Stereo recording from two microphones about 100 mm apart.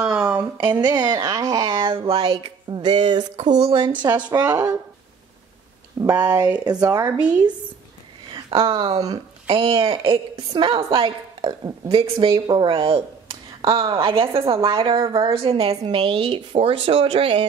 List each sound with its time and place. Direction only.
0.0 s a sound: 10° right (ahead or behind)
0.6 s speech: 45° right (ahead or behind)
2.0 s speech: 60° right (ahead or behind); by 3.3 s 45° right (ahead or behind)
4.3 s speech: 40° right (ahead or behind)
5.9 s speech: 35° right (ahead or behind)
8.3 s speech: 65° right (ahead or behind)
8.9 s speech: 35° right (ahead or behind)
9.5 s a woman's voice: 60° right (ahead or behind)